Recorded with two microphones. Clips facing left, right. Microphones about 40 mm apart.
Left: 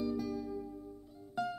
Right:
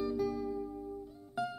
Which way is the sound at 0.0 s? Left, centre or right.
Centre.